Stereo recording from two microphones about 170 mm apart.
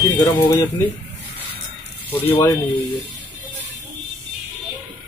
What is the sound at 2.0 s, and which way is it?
Speech, 10° left (ahead or behind).